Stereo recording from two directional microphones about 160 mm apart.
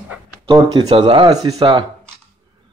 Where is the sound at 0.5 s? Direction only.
30° right (ahead or behind).